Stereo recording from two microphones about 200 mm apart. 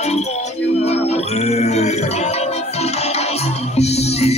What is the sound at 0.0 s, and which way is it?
Music, 35° left (ahead or behind).